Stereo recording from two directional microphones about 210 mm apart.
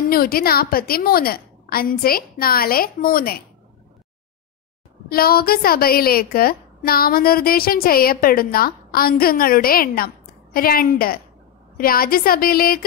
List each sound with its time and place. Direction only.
0.1 s a woman's voice: 45° left (ahead or behind)
5.1 s a woman's voice: 45° left (ahead or behind)